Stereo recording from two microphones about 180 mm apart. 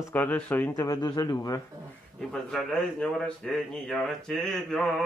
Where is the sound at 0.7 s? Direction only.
20° left (ahead or behind).